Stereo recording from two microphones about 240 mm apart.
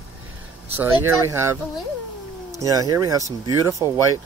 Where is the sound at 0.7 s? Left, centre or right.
Centre.